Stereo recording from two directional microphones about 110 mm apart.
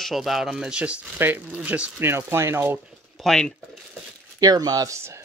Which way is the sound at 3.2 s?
5° left (ahead or behind).